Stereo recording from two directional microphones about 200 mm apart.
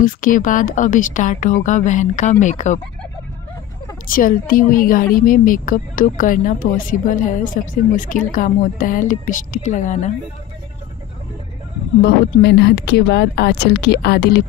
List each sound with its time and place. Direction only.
0.0 s speech: 40° left (ahead or behind)
4.1 s speech: 45° left (ahead or behind)
12.0 s speech: 55° left (ahead or behind)